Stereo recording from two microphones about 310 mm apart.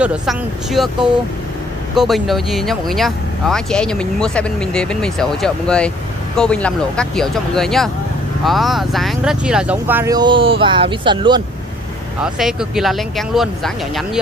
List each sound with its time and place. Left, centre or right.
0.0 s speech: centre
12.2 s speech: centre